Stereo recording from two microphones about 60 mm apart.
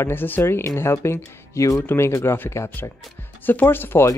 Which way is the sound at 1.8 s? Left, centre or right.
Left.